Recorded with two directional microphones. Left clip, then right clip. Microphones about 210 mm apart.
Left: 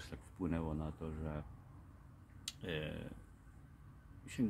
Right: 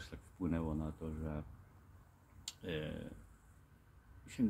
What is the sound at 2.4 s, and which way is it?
Speech, 20° left (ahead or behind).